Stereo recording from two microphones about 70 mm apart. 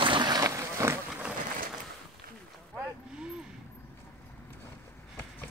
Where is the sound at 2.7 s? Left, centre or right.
Centre.